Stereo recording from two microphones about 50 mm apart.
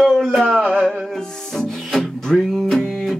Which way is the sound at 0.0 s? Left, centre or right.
Centre.